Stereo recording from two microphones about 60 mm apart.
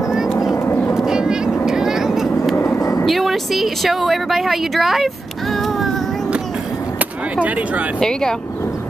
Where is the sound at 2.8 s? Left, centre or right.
Left.